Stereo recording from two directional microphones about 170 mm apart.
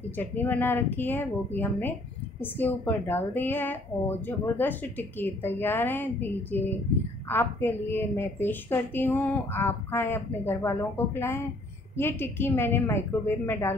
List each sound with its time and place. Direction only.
0.2 s a woman's voice: 10° left (ahead or behind)